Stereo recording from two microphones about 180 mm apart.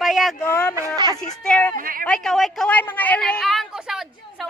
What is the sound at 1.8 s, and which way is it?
Speech, 50° right (ahead or behind).